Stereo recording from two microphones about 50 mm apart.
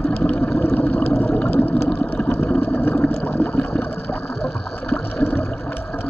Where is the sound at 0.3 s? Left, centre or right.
Left.